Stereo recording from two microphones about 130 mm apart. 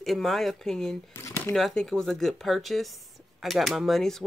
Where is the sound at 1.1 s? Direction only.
25° left (ahead or behind).